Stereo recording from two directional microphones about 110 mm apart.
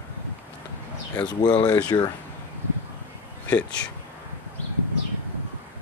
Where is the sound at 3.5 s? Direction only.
10° left (ahead or behind).